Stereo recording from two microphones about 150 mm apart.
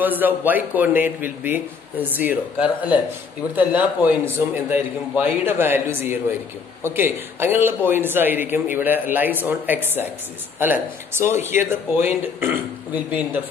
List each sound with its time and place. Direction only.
0.0 s a man's voice: 10° right (ahead or behind)